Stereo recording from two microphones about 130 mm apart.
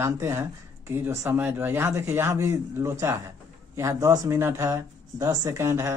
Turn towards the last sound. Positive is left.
turn(degrees=-20)  # may be behind; listen again after turning